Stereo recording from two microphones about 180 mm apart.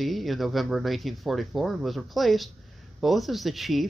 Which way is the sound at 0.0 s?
Centre (ahead or behind).